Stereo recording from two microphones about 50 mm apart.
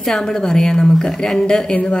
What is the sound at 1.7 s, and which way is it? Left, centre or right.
Speech, left.